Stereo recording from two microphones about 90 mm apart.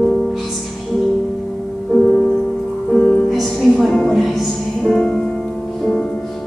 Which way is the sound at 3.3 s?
5° left (ahead or behind).